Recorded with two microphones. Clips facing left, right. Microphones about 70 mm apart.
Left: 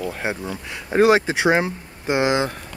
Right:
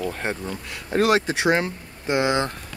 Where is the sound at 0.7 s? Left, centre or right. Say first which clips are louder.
Left 4 dB; left.